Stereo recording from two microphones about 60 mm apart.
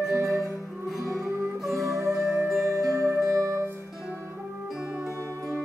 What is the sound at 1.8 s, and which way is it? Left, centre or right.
Music, right.